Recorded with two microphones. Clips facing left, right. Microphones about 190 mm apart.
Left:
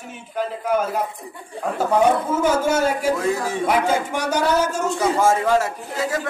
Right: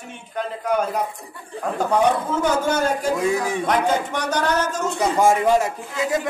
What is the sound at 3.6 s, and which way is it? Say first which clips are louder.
A man's voice: left 3 dB; 10° left (ahead or behind).